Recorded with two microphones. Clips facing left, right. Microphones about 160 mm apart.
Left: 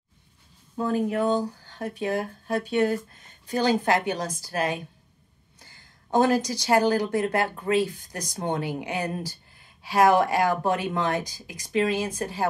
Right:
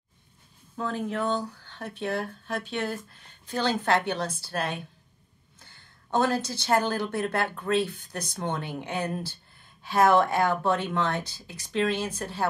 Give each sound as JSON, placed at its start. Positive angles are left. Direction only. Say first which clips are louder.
{"t": 0.7, "sound": "speech", "louder": "left 5 dB", "side_deg": 10}
{"t": 1.4, "sound": "a sound", "louder": "left 5 dB", "side_deg": 35}
{"t": 1.8, "sound": "speech", "louder": "left 3 dB", "side_deg": 10}
{"t": 6.3, "sound": "speech", "louder": "left 3 dB", "side_deg": 10}